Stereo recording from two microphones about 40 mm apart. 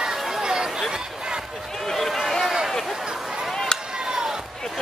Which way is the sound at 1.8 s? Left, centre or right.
Centre.